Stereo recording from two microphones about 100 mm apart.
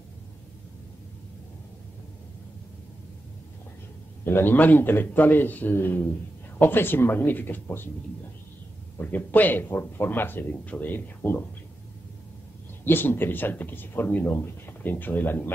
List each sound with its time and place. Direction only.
4.2 s speech: 20° left (ahead or behind)
9.1 s speech: 15° left (ahead or behind)
12.8 s speech: 20° left (ahead or behind)